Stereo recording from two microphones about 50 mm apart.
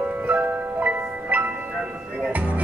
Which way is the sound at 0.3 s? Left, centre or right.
Right.